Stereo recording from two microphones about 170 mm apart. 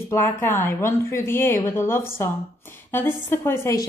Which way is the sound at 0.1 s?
15° left (ahead or behind).